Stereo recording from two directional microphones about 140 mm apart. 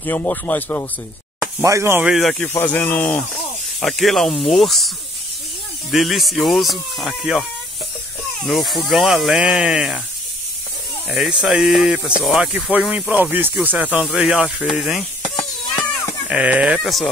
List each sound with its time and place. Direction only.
0.0 s speech: 15° left (ahead or behind)
1.6 s speech: 20° right (ahead or behind)
2.0 s speech: centre (ahead or behind)
2.4 s speech: 15° left (ahead or behind)
3.8 s speech: centre (ahead or behind)
8.5 s speech: centre (ahead or behind)
11.1 s speech: centre (ahead or behind)
16.3 s speech: 10° right (ahead or behind)